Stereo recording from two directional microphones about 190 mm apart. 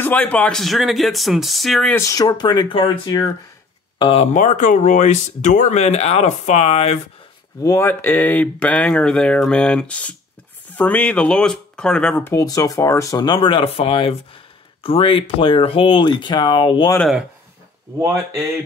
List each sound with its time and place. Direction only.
0.0 s speech: 10° left (ahead or behind)
2.0 s speech: 20° left (ahead or behind); by 7.0 s 35° left (ahead or behind)
7.6 s speech: 15° left (ahead or behind)
16.9 s speech: 5° left (ahead or behind)